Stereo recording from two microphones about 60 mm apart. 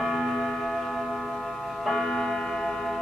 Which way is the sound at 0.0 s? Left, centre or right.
Centre.